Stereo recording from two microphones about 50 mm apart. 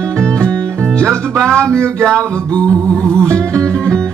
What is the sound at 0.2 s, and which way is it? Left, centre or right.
Music, centre.